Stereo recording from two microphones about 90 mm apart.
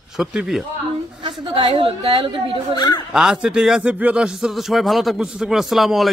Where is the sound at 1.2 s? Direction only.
80° right.